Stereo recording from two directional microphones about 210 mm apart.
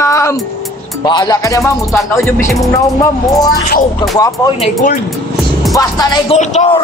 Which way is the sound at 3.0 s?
20° left (ahead or behind).